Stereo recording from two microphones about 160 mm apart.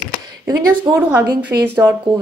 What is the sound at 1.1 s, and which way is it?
Speech, 10° right (ahead or behind).